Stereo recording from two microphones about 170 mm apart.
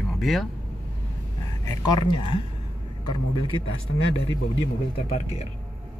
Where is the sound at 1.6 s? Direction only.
25° left (ahead or behind).